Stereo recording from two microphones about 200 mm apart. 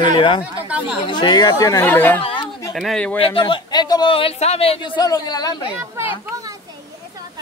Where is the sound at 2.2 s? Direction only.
25° left (ahead or behind).